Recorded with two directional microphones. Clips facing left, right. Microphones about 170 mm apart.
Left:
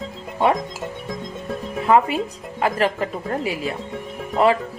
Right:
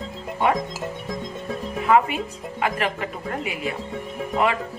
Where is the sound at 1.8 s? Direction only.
35° left (ahead or behind).